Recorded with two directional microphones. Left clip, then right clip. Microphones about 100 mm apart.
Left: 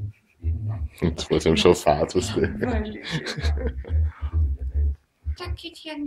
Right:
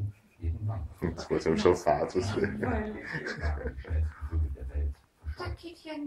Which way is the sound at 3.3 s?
55° left (ahead or behind).